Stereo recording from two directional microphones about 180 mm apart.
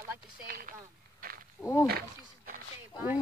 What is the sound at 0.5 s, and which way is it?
Speech, 55° right (ahead or behind).